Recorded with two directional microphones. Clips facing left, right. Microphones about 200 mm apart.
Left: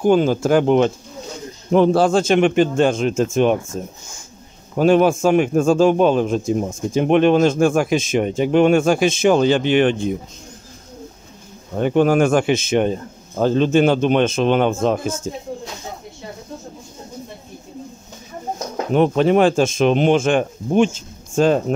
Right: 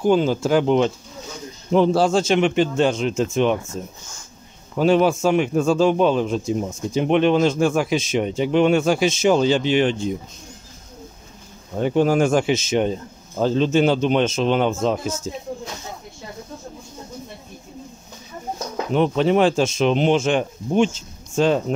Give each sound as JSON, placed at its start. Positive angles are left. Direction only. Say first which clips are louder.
{"t": 0.0, "sound": "a man's voice", "louder": "left 3 dB", "side_deg": 50}
{"t": 11.8, "sound": "a man's voice", "louder": "left 2 dB", "side_deg": 60}
{"t": 18.9, "sound": "a man's voice", "louder": "left 3 dB", "side_deg": 50}